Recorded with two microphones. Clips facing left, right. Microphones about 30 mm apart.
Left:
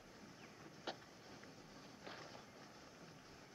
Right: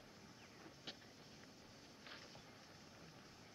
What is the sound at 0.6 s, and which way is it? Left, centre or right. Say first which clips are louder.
Train: left 6 dB; centre.